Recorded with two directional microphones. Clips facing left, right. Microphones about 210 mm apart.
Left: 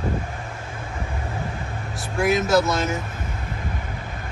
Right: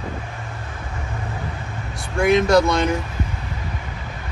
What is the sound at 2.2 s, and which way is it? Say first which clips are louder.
Speech: right 4 dB; 5° left (ahead or behind).